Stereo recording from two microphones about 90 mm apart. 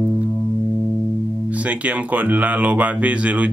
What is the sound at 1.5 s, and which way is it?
Speech, 15° right (ahead or behind).